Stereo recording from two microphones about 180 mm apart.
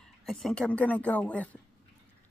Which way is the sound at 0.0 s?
Centre (ahead or behind).